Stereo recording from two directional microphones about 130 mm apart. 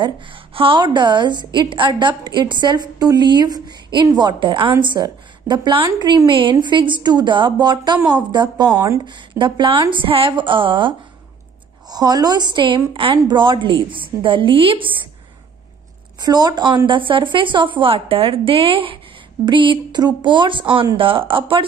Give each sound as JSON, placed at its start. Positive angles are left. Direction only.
{"t": 0.0, "sound": "a woman's voice", "side_deg": -40}
{"t": 16.2, "sound": "a woman's voice", "side_deg": -30}